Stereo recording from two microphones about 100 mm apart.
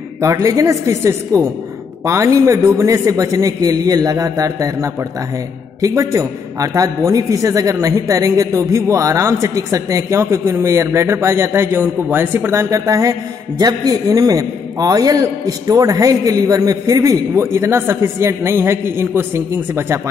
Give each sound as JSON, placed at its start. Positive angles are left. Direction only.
{"t": 0.2, "sound": "a man's voice", "side_deg": -30}